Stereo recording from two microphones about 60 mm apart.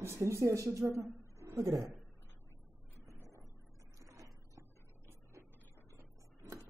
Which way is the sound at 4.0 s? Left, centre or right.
Right.